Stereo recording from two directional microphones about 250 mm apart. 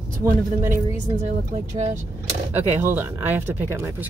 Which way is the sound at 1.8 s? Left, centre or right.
Right.